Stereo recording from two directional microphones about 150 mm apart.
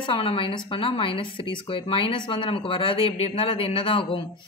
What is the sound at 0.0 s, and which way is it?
Speech, 35° left (ahead or behind).